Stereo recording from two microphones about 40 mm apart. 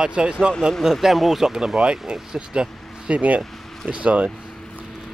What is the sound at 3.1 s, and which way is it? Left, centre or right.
Speech, right.